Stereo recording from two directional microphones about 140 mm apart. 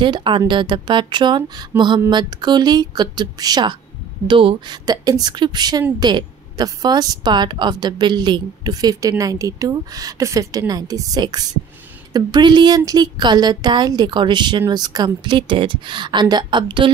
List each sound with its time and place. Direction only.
0.0 s a woman's voice: 35° right (ahead or behind)
1.7 s a sound: 15° right (ahead or behind)
2.0 s a woman's voice: 30° right (ahead or behind)